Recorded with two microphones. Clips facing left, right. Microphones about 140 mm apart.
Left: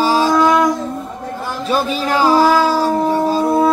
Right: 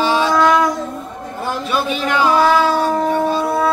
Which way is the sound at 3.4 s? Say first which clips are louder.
Left 3 dB; 15° left (ahead or behind).